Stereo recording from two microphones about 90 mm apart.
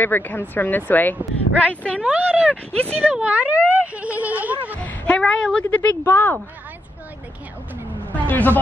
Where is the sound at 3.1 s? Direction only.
15° right (ahead or behind).